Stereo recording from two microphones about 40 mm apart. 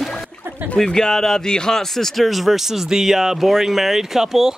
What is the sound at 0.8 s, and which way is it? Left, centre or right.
Speech, centre.